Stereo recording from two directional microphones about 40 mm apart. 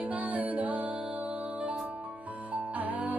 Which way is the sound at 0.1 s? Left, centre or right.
Right.